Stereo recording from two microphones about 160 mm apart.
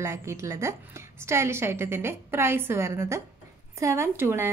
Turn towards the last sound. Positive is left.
turn(degrees=-15)  # may be behind; listen again after turning